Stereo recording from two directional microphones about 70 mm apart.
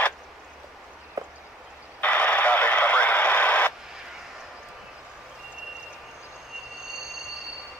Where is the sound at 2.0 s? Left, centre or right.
Left.